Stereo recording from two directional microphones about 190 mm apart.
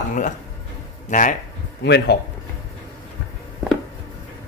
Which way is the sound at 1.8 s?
60° left (ahead or behind).